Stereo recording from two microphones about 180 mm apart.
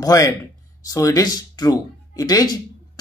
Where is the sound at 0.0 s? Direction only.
20° left (ahead or behind).